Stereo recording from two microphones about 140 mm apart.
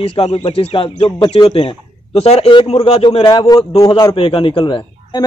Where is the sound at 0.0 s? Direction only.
45° left (ahead or behind); by 4.1 s 30° left (ahead or behind).